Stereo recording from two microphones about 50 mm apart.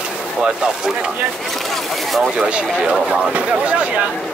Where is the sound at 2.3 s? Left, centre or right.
Centre.